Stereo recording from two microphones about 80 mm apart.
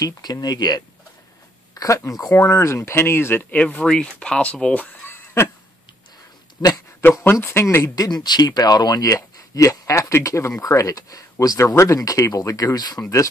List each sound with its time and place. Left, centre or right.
0.0 s speech: left
2.0 s speech: left
2.3 s speech: left
3.5 s speech: centre
5.0 s a sound: left
7.0 s speech: left